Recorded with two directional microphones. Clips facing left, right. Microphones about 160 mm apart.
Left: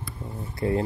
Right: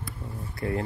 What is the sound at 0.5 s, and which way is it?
Speech, 25° left (ahead or behind).